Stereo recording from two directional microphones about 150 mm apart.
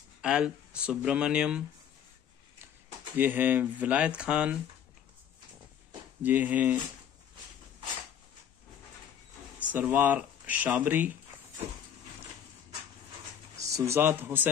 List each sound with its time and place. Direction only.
0.2 s speech: 5° right (ahead or behind)
3.2 s speech: 10° right (ahead or behind)
6.2 s speech: 10° right (ahead or behind)
9.6 s speech: 10° right (ahead or behind)
13.6 s speech: 20° right (ahead or behind)